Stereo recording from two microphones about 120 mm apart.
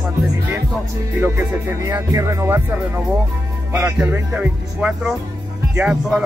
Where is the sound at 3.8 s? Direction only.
10° right (ahead or behind).